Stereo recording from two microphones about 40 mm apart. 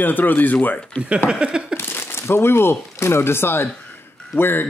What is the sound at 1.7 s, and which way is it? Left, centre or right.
Speech, left.